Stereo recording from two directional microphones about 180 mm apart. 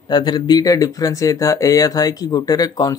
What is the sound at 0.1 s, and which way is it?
Speech, 25° left (ahead or behind).